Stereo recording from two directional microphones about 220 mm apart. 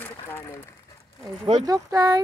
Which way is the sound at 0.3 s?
10° left (ahead or behind).